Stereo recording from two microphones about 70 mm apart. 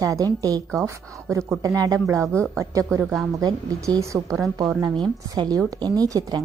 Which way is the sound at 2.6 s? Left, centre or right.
Right.